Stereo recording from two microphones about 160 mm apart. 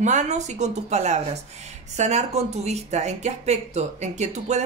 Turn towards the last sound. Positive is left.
turn(degrees=-45)  # may be behind; listen again after turning